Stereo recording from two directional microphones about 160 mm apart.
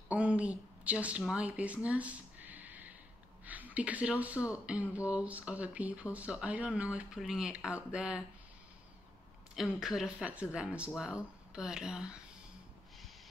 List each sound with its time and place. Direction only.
0.1 s a sound: 10° right (ahead or behind)
3.4 s speech: 10° right (ahead or behind)
9.6 s speech: 5° right (ahead or behind)